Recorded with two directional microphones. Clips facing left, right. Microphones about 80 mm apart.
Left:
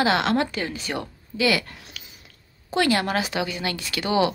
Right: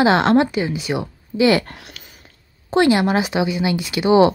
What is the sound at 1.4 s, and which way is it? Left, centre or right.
Speech, right.